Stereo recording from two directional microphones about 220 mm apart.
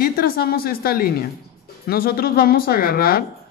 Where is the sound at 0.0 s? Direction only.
45° left (ahead or behind).